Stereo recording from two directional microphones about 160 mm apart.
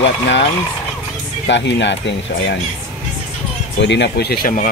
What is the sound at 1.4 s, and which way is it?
Speech, 90° left.